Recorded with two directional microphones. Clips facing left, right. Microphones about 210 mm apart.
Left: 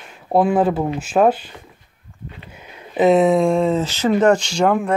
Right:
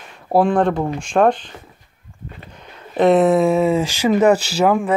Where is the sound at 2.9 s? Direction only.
Centre (ahead or behind).